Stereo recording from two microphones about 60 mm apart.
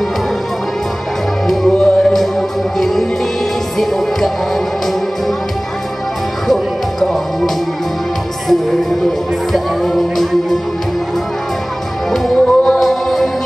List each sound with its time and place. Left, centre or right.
1.5 s music: centre
6.4 s music: centre
12.1 s music: centre